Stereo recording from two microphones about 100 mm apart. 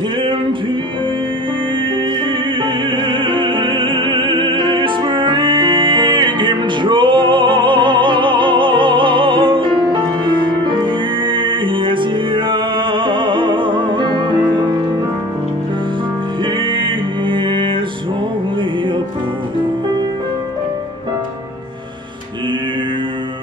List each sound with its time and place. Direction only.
2.6 s opera: 55° right (ahead or behind)
10.2 s music: 55° right (ahead or behind)
16.7 s music: 55° right (ahead or behind)